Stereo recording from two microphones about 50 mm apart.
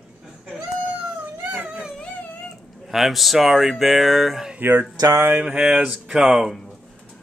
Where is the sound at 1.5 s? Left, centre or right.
Right.